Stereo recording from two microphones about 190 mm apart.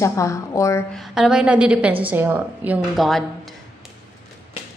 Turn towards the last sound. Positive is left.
turn(degrees=0)  # may be behind; listen again after turning